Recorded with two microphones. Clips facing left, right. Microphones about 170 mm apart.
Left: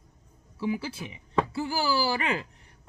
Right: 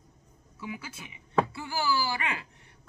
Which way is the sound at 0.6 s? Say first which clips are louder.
Left 9 dB; 30° left (ahead or behind).